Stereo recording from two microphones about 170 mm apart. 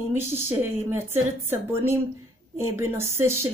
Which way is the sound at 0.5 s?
15° right (ahead or behind).